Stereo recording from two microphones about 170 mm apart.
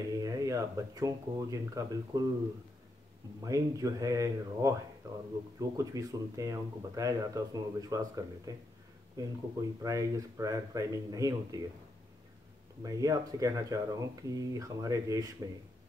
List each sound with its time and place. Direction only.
0.2 s speech: 20° right (ahead or behind)
3.4 s speech: 20° right (ahead or behind)
12.8 s speech: 20° right (ahead or behind)